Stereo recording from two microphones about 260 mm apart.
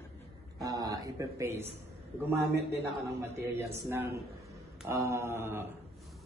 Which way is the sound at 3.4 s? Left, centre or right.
Centre.